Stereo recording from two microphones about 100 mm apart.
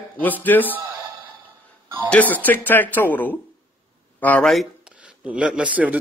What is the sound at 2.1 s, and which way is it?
A man's voice, 15° left (ahead or behind).